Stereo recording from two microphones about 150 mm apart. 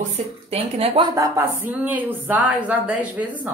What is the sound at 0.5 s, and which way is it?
Speech, 45° right (ahead or behind).